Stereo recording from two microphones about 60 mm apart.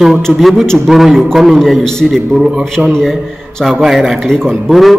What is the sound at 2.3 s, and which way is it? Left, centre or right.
Speech, centre.